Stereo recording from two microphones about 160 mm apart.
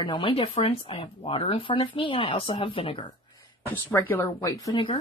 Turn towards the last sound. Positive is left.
turn(degrees=30)  # may be behind; listen again after turning